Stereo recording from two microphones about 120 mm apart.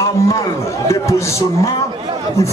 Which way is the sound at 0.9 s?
25° left (ahead or behind).